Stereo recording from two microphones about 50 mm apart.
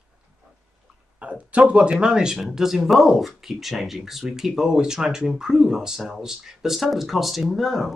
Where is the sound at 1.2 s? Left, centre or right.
Right.